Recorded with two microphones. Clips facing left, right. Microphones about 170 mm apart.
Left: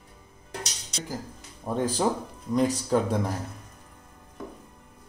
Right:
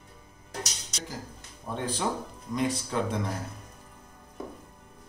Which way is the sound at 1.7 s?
45° left (ahead or behind).